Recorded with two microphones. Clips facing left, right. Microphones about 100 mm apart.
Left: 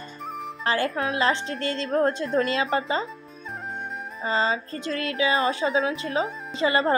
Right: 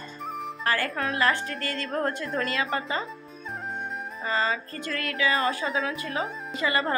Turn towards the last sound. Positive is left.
turn(degrees=25)  # may be behind; listen again after turning